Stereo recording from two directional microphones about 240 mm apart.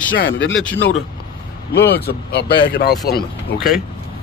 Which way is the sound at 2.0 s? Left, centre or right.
Left.